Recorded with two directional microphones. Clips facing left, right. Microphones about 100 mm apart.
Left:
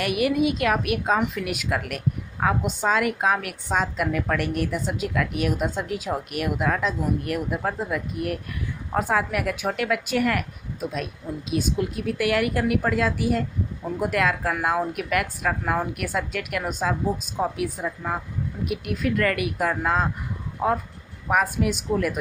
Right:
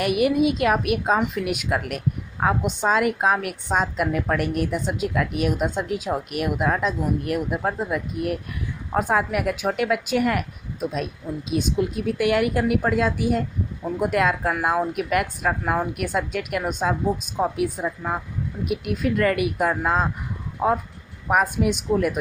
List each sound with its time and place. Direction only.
0.0 s a woman's voice: 20° right (ahead or behind)